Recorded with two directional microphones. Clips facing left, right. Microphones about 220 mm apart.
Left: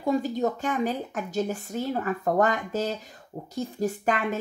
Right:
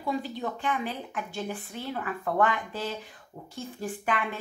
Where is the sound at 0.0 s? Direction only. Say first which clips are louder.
Left 7 dB; 45° left (ahead or behind).